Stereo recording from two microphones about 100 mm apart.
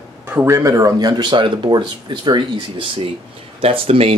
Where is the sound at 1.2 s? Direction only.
50° right (ahead or behind).